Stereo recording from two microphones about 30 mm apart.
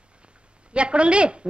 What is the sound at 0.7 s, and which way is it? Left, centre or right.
Speech, right.